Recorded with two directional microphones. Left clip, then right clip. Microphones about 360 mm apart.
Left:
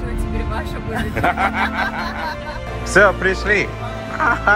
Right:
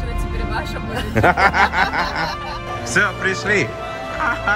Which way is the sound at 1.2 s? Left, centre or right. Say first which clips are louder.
Right 4 dB; right.